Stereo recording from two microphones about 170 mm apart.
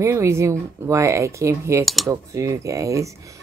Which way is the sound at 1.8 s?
Centre (ahead or behind).